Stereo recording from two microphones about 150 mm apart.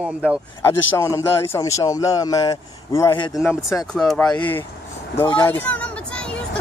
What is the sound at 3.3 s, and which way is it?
Speech, centre (ahead or behind).